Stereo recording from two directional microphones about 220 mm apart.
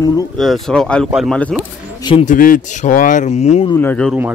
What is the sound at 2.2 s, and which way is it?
Speech, 35° left (ahead or behind).